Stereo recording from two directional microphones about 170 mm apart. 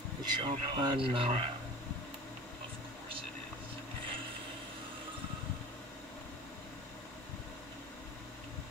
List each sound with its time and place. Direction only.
0.2 s speech: 25° right (ahead or behind)